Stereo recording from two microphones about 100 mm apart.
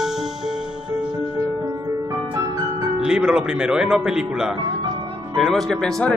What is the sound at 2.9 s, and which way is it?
Speech, 5° right (ahead or behind).